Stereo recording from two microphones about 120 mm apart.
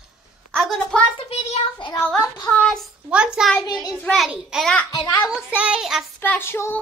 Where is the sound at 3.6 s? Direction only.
30° left (ahead or behind).